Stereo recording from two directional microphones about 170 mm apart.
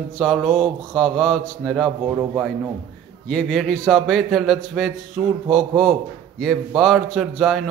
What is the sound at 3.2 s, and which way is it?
Speech, 5° left (ahead or behind).